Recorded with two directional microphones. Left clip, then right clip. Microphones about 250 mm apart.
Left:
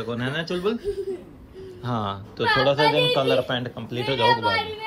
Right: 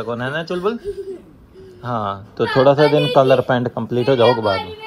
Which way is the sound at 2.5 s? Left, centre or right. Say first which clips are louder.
Right 6 dB; right.